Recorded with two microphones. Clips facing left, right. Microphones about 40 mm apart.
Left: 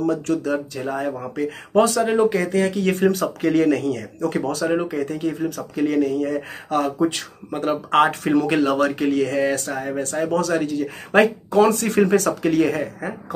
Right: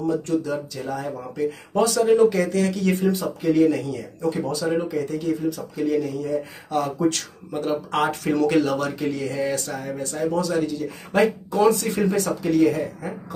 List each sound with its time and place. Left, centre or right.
0.0 s speech: left
0.7 s speech: left
3.0 s speech: left
4.6 s speech: left
7.0 s speech: left
7.6 s speech: left